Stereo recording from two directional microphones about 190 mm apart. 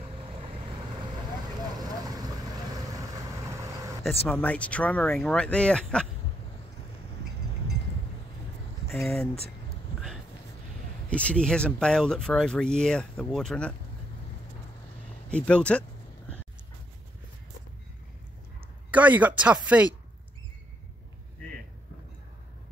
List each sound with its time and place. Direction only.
1.8 s vehicle: 20° right (ahead or behind)
4.3 s speech: 5° left (ahead or behind)
8.9 s speech: centre (ahead or behind)
11.1 s speech: 5° left (ahead or behind)
15.2 s speech: 5° left (ahead or behind)
18.9 s speech: 10° right (ahead or behind)